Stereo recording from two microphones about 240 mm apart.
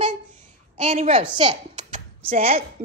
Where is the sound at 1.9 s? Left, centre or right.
Right.